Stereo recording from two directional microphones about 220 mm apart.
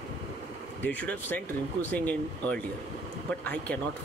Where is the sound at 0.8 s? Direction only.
5° left (ahead or behind).